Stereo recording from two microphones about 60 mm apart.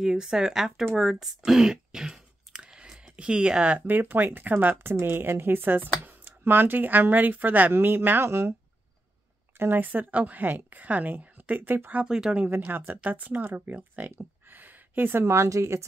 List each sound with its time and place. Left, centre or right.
0.0 s speech: centre
3.8 s speech: right
4.8 s speech: right
9.6 s speech: right
12.1 s speech: centre
12.4 s speech: right
14.5 s a sound: right
15.2 s speech: right